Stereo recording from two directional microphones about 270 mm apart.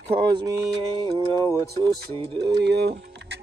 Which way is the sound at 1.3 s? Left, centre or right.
Centre.